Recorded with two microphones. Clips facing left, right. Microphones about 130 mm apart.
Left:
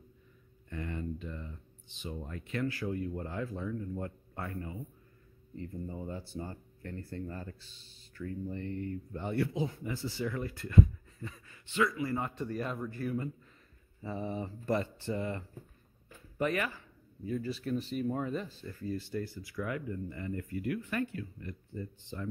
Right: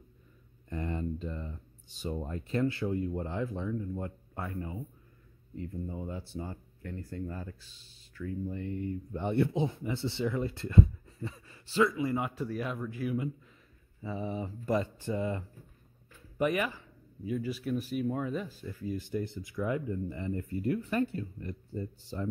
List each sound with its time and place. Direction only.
0.7 s speech: 30° right (ahead or behind)
5.6 s speech: 5° right (ahead or behind)
12.3 s speech: 5° right (ahead or behind); by 22.3 s 35° right (ahead or behind)